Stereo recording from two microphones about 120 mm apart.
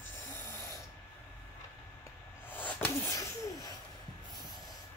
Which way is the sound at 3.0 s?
25° left (ahead or behind).